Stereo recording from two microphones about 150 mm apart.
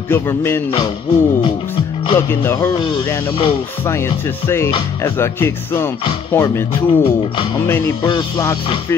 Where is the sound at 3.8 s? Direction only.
15° left (ahead or behind).